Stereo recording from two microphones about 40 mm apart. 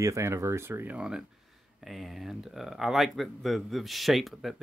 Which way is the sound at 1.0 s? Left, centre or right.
Centre.